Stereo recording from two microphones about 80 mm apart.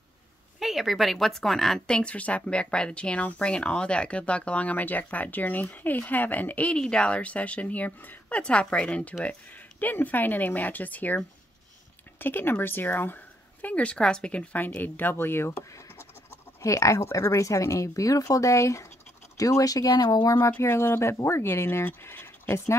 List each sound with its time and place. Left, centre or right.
0.6 s speech: centre; by 15.5 s left
16.6 s speech: left
20.6 s speech: left